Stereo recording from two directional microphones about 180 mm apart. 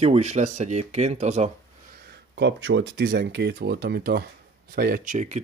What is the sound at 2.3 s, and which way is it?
Speech, 85° right.